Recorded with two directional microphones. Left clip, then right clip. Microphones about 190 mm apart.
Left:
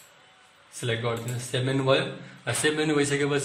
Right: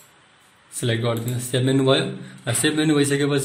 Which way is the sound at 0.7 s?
20° right (ahead or behind).